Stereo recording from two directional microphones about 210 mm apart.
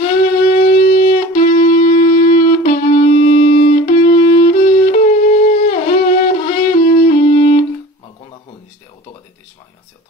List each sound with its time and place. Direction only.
0.6 s wind instrument: 40° left (ahead or behind)